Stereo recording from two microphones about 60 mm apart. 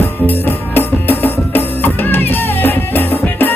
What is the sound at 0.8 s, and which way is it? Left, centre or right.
Music, left.